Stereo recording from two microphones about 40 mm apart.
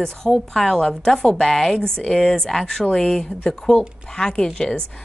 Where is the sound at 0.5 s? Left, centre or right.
Centre.